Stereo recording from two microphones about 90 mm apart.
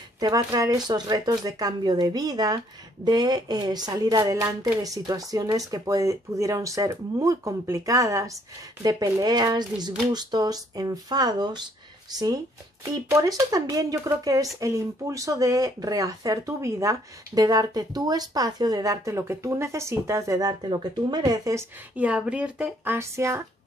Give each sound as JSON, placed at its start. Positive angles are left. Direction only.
{"t": 0.2, "sound": "speech", "side_deg": -40}
{"t": 0.8, "sound": "speech", "side_deg": -50}
{"t": 20.3, "sound": "speech", "side_deg": -50}
{"t": 21.2, "sound": "speech", "side_deg": -35}
{"t": 21.9, "sound": "speech", "side_deg": -15}
{"t": 22.8, "sound": "speech", "side_deg": -30}